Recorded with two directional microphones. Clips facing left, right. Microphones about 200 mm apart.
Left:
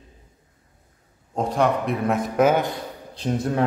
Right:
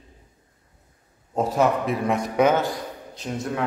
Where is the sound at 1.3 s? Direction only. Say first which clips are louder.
Even; 5° right (ahead or behind).